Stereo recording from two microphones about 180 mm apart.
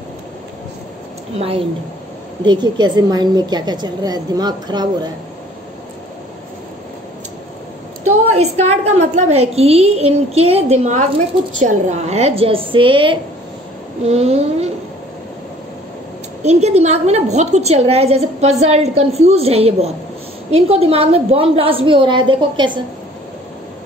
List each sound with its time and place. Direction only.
2.4 s a woman's voice: 25° right (ahead or behind)
8.0 s a woman's voice: 40° right (ahead or behind)
16.4 s a woman's voice: 40° right (ahead or behind)